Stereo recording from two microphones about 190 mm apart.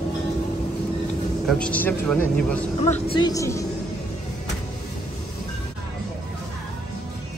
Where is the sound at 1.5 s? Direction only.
5° left (ahead or behind).